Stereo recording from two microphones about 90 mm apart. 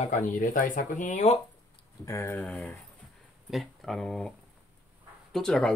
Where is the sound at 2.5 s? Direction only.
10° left (ahead or behind).